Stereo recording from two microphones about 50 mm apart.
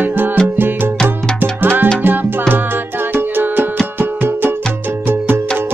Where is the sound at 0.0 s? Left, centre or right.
Right.